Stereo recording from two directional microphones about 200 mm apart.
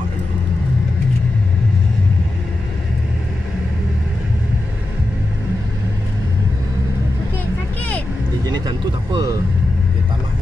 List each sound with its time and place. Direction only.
8.5 s vehicle: 20° right (ahead or behind)